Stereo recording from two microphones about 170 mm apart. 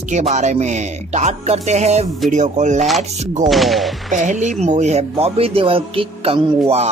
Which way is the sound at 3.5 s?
Centre (ahead or behind).